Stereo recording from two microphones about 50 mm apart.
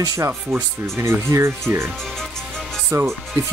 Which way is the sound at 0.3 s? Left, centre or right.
Right.